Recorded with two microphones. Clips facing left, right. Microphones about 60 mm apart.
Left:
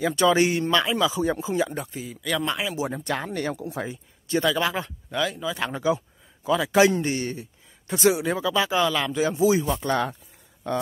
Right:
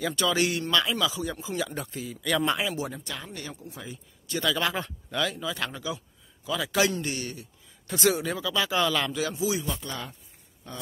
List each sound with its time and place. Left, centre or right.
0.0 s a man's voice: left
1.7 s speech: centre
3.0 s speech: left
3.5 s speech: left
3.9 s speech: left
4.6 s speech: centre
5.7 s a man's voice: left
7.8 s speech: centre
8.3 s a man's voice: left
8.6 s speech: centre
9.1 s a man's voice: left
9.4 s speech: left
9.8 s speech: left